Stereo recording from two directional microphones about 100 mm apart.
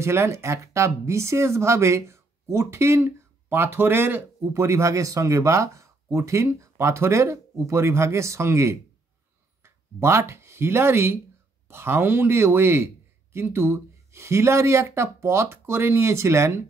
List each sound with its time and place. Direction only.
0.0 s speech: 25° right (ahead or behind)
9.9 s speech: 25° right (ahead or behind)